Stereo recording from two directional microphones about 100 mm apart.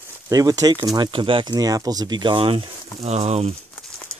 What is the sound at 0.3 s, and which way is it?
Speech, 35° right (ahead or behind).